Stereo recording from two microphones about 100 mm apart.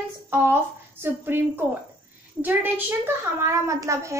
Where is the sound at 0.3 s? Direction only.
20° right (ahead or behind).